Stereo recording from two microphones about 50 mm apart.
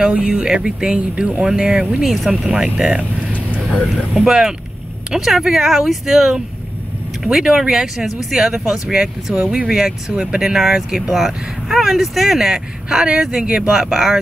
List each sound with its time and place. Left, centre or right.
0.1 s speech: centre
4.1 s speech: centre